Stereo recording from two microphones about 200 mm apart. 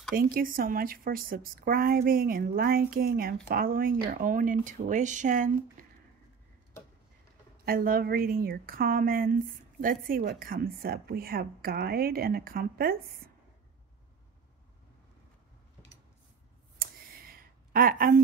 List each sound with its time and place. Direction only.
0.1 s a woman's voice: 45° right (ahead or behind)
7.6 s a woman's voice: 45° right (ahead or behind)
16.7 s a sound: 50° right (ahead or behind)